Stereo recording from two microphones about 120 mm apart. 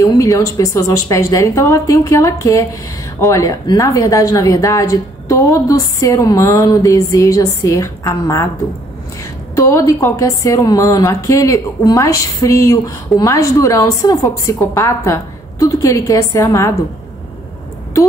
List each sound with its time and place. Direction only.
0.0 s a woman's voice: 30° left (ahead or behind)
9.6 s a woman's voice: 25° left (ahead or behind)